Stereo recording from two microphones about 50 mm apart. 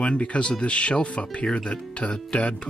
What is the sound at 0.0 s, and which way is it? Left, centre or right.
Speech, left.